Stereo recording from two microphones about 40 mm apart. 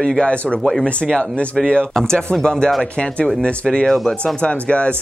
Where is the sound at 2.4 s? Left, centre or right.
Left.